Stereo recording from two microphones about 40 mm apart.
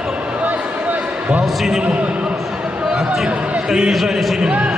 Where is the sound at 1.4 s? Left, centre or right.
Centre.